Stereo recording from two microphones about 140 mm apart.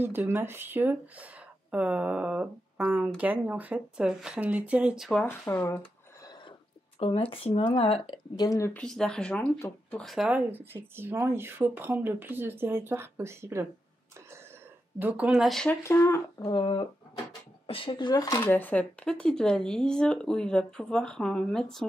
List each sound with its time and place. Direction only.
0.3 s speech: 15° right (ahead or behind)
5.2 s speech: 15° left (ahead or behind)
7.0 s speech: 40° left (ahead or behind)
8.4 s speech: 25° left (ahead or behind)
8.7 s speech: 5° left (ahead or behind); by 13.7 s 20° right (ahead or behind)
15.0 s speech: 10° right (ahead or behind); by 15.8 s 5° left (ahead or behind)
15.8 s speech: 20° left (ahead or behind)
16.4 s speech: 35° left (ahead or behind)
18.4 s speech: 15° left (ahead or behind)